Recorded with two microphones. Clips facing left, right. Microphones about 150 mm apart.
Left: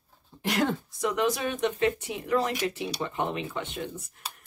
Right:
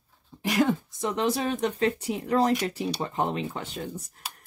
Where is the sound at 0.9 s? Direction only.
30° right (ahead or behind).